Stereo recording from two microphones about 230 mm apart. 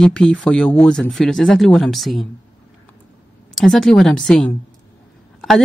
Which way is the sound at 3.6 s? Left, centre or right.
Centre.